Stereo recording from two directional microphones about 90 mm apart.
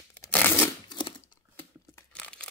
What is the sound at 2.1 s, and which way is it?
Tearing, 10° left (ahead or behind).